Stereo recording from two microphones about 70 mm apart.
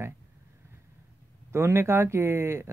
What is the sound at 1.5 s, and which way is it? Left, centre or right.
Speech, right.